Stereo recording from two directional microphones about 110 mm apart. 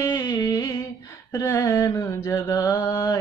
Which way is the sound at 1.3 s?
25° left (ahead or behind).